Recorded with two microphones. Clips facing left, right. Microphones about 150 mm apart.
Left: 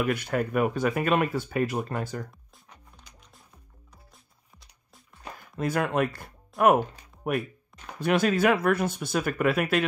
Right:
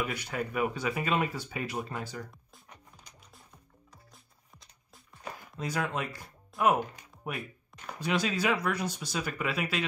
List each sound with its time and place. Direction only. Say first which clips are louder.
0.0 s speech: left 7 dB; 55° left (ahead or behind)
5.6 s speech: left 8 dB; 55° left (ahead or behind)